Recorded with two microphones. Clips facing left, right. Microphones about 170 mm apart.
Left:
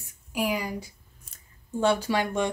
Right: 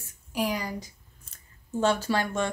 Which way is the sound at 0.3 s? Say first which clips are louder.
Left 1 dB; 10° left (ahead or behind).